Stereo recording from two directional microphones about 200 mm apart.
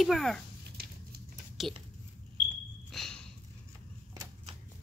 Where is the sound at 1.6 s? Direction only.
Centre (ahead or behind).